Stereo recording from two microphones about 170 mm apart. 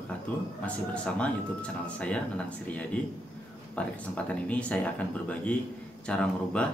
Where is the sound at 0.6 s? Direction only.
5° left (ahead or behind).